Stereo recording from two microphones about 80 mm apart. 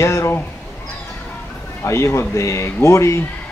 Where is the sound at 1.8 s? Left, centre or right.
Left.